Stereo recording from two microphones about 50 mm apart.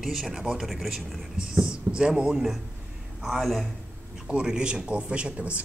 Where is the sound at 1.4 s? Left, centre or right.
Centre.